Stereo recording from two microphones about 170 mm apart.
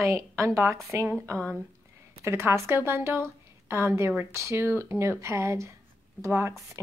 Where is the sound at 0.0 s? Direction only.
15° right (ahead or behind).